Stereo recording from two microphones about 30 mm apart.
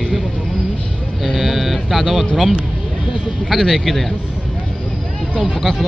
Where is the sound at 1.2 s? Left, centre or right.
Centre.